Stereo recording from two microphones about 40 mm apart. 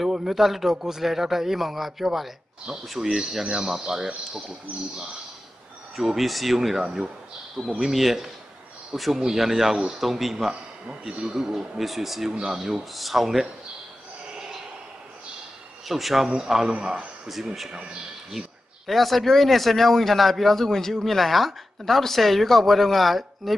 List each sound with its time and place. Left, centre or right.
0.0 s speech: centre
3.0 s speech: centre
5.9 s speech: centre
6.8 s speech: centre
7.8 s speech: centre
10.9 s speech: centre
12.3 s a man's voice: centre
12.5 s speech: centre
15.9 s speech: centre
16.7 s a man's voice: right
17.3 s speech: centre
18.9 s speech: centre